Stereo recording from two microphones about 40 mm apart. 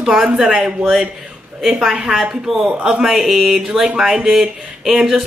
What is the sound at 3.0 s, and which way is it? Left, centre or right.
Speech, centre.